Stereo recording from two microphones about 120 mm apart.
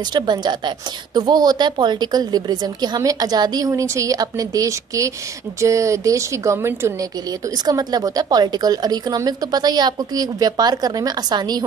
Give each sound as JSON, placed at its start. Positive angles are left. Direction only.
{"t": 0.1, "sound": "a woman's voice", "side_deg": -40}